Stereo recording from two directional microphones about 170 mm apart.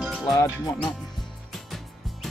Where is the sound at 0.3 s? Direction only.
20° left (ahead or behind).